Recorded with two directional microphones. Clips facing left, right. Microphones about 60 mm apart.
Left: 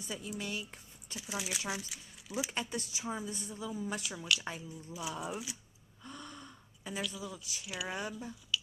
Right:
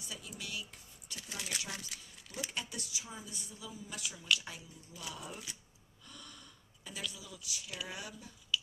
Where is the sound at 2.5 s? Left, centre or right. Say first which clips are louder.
Left 5 dB; left.